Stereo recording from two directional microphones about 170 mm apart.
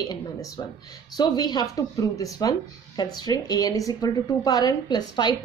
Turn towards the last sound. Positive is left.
turn(degrees=25)  # may be behind; listen again after turning